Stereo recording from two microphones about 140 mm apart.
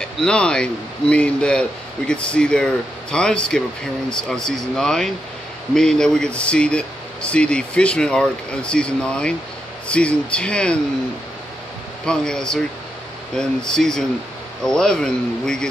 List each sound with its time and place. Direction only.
0.2 s speech: 5° left (ahead or behind)
12.1 s speech: 5° left (ahead or behind)